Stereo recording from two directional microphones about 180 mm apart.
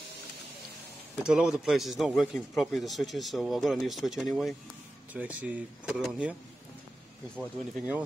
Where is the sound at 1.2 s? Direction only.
5° right (ahead or behind).